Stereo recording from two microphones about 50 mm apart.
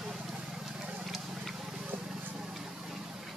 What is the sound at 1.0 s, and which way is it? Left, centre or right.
Vehicle, centre.